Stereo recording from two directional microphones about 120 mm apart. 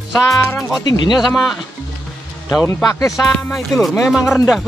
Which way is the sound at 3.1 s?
Centre (ahead or behind).